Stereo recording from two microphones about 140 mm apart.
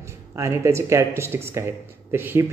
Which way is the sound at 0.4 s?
20° right (ahead or behind).